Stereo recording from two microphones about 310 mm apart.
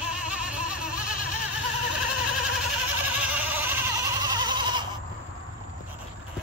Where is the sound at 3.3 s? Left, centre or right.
Centre.